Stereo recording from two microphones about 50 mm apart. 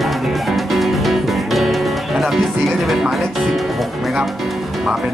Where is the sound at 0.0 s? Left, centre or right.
Centre.